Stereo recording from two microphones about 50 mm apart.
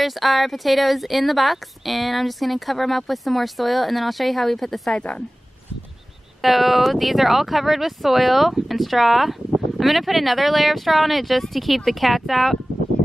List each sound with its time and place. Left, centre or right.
0.0 s speech: centre
4.9 s a woman's voice: left
6.4 s speech: centre